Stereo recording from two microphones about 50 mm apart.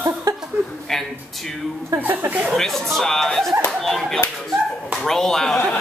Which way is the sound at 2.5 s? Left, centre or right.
Centre.